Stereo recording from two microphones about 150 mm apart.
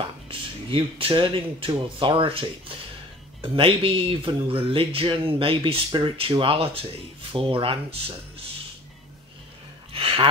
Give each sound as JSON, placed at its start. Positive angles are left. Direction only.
{"t": 0.0, "sound": "speech", "side_deg": -35}
{"t": 3.5, "sound": "speech", "side_deg": -35}
{"t": 9.9, "sound": "a sound", "side_deg": -35}